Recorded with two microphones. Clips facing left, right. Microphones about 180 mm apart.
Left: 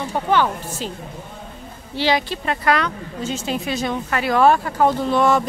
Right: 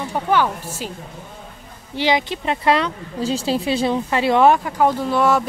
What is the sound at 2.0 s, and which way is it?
A woman's voice, 20° right (ahead or behind).